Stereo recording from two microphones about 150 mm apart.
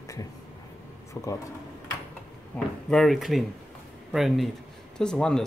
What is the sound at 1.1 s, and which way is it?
Speech, 20° left (ahead or behind).